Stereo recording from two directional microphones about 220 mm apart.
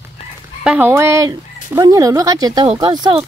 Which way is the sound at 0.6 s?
5° right (ahead or behind).